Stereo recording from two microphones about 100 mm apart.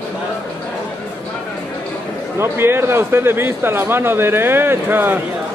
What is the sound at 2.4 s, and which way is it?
A man's voice, 25° right (ahead or behind).